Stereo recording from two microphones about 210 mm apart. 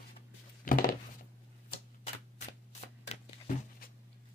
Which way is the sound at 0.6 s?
40° left (ahead or behind).